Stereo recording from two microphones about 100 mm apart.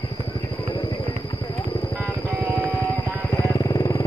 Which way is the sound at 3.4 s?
35° left (ahead or behind).